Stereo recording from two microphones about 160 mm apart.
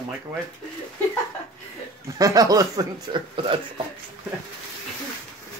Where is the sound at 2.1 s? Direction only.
25° right (ahead or behind).